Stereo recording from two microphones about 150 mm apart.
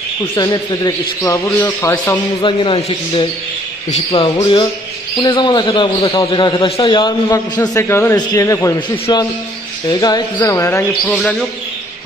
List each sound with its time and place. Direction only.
0.4 s speech: 25° left (ahead or behind)
2.4 s a man's voice: 35° left (ahead or behind); by 11.1 s 20° left (ahead or behind)
11.1 s a man's voice: centre (ahead or behind)